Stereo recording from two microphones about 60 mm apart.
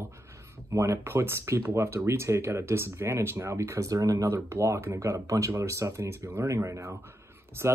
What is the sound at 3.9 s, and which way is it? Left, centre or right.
Speech, right.